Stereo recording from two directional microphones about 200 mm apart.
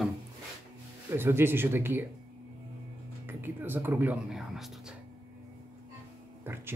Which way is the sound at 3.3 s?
10° right (ahead or behind).